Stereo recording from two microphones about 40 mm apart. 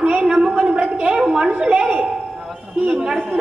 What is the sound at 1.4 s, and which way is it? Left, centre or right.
Speech, right.